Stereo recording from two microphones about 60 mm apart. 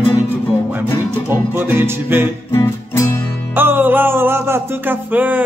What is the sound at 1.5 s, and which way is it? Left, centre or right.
Music, right.